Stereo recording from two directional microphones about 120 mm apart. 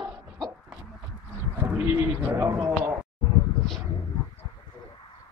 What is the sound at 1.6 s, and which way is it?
Bird, 15° right (ahead or behind).